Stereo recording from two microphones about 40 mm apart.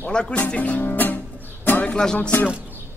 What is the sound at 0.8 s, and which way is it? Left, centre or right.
Speech, left.